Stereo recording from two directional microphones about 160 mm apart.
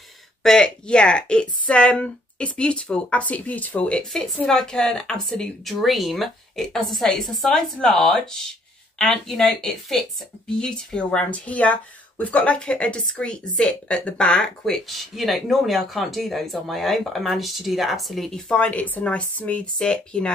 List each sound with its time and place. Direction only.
0.4 s speech: 5° left (ahead or behind)